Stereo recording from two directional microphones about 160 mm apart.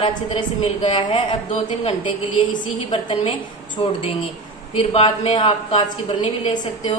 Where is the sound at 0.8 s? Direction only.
35° left (ahead or behind).